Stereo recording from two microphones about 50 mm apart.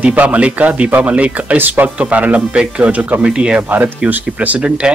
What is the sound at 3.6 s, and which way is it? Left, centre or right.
Speech, right.